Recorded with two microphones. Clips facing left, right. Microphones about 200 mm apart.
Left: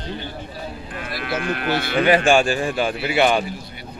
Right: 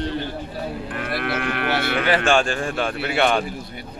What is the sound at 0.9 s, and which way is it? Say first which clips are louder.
Speech: even; 60° right (ahead or behind).